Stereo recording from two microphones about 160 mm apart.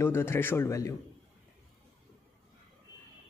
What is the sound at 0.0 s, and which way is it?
Speech, 15° left (ahead or behind).